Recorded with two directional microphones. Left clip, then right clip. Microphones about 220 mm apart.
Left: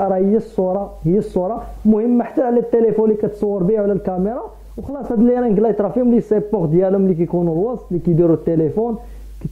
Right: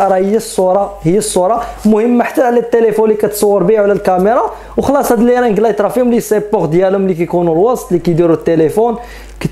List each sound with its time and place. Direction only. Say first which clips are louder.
0.0 s speech: right 6 dB; 10° right (ahead or behind)
7.5 s speech: right 9 dB; 30° right (ahead or behind)
8.0 s speech: even; 10° right (ahead or behind)